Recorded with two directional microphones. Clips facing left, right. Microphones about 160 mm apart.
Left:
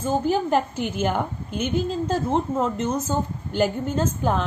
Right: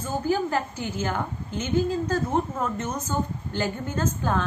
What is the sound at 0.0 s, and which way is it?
A woman's voice, 20° left (ahead or behind).